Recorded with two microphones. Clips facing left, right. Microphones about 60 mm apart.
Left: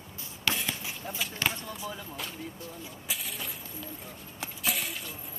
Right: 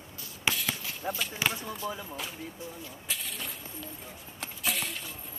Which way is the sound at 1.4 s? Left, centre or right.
Centre.